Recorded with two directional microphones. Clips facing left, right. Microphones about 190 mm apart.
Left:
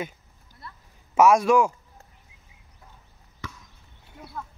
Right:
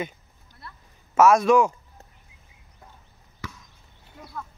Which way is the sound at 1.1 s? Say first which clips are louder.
Right 1 dB; 10° left (ahead or behind).